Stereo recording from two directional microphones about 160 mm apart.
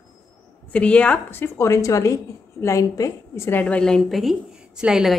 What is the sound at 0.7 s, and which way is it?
A woman's voice, 5° left (ahead or behind).